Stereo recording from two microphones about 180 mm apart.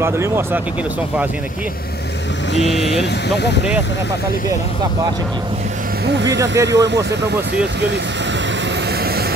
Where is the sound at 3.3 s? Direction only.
70° left (ahead or behind).